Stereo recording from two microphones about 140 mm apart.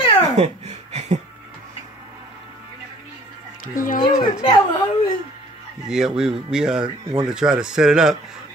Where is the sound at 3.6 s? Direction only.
75° left (ahead or behind).